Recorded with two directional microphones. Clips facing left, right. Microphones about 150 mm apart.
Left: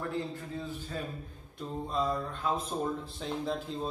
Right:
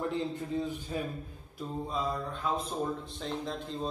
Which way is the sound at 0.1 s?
20° right (ahead or behind).